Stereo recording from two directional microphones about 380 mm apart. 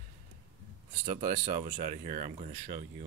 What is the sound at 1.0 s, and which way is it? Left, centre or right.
Speech, centre.